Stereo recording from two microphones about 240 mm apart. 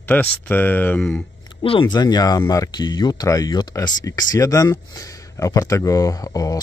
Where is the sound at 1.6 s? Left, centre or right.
Centre.